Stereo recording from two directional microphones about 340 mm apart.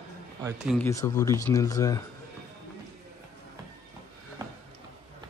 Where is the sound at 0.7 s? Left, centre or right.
Centre.